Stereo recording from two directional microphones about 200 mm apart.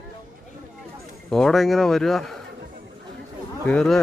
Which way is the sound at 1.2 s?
Centre (ahead or behind).